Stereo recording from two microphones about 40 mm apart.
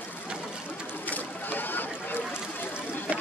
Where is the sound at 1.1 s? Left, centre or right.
Left.